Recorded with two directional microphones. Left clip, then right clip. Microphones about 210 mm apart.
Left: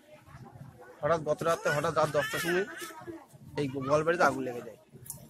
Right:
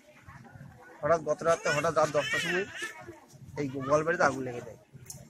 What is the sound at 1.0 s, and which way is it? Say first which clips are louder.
A man's voice: right 1 dB; 10° left (ahead or behind).